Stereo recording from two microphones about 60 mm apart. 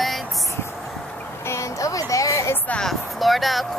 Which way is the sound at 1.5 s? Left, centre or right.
Left.